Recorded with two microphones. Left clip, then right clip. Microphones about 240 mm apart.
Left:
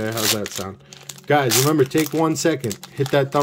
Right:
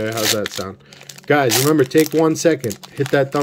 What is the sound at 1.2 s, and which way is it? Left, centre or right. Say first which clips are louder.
Speech: right 2 dB; centre.